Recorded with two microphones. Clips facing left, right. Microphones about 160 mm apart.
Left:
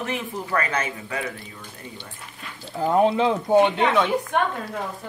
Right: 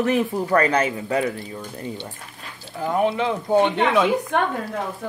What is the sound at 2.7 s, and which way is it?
Speech, 30° left (ahead or behind).